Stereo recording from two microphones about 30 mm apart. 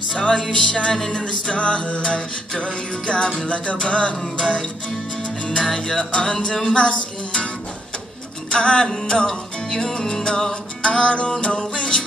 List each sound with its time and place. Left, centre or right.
0.2 s music: left
3.4 s music: left
5.5 s music: left
8.5 s music: left
8.8 s music: centre; by 12.0 s left